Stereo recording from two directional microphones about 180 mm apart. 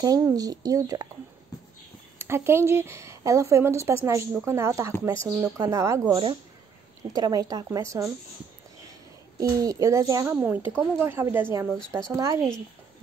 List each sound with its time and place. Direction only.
0.0 s speech: 20° right (ahead or behind)
2.1 s speech: 15° right (ahead or behind)
9.4 s speech: 20° right (ahead or behind)